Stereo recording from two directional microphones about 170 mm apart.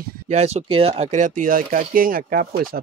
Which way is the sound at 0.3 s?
40° right (ahead or behind).